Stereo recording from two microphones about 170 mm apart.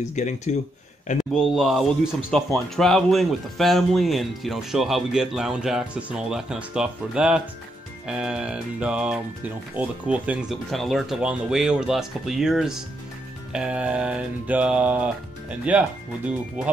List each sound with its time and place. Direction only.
0.1 s speech: 45° left (ahead or behind)
1.3 s speech: centre (ahead or behind)
13.5 s mantra: 5° right (ahead or behind)